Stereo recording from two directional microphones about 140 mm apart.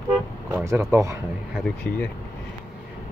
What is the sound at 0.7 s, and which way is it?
Speech, 20° right (ahead or behind).